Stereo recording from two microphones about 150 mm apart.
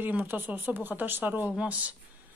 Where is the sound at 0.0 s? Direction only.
10° right (ahead or behind).